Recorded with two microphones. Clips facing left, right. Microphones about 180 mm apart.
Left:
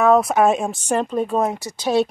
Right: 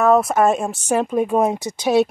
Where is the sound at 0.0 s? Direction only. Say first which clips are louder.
Even; centre (ahead or behind).